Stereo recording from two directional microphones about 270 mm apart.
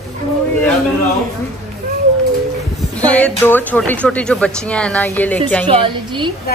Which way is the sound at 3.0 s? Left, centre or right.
Centre.